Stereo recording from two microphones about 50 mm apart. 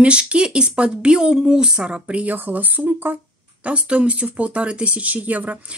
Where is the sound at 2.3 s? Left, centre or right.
Right.